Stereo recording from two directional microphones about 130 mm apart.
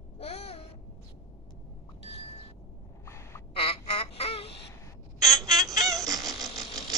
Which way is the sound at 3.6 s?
45° left (ahead or behind).